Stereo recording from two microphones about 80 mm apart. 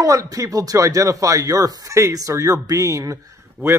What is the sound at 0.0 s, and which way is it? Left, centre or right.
A man's voice, right.